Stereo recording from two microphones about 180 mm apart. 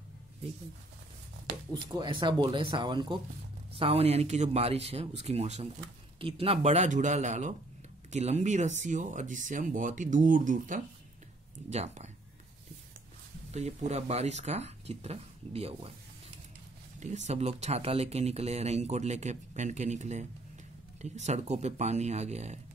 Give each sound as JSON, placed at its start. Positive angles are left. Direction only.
{"t": 1.7, "sound": "speech", "side_deg": -25}
{"t": 13.5, "sound": "speech", "side_deg": -35}
{"t": 17.0, "sound": "speech", "side_deg": -40}